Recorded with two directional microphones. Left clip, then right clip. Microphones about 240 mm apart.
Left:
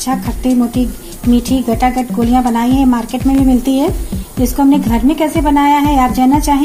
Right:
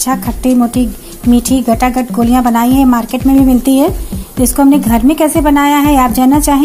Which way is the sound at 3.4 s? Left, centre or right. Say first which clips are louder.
Right 3 dB; right.